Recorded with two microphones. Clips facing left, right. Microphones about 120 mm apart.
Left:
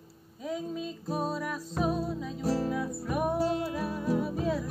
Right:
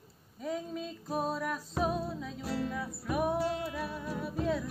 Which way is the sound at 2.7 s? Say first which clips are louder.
Left 3 dB; centre (ahead or behind).